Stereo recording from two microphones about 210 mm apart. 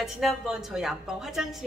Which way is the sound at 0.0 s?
Centre (ahead or behind).